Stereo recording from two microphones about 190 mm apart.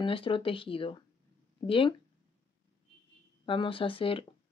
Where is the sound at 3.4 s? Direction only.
25° left (ahead or behind).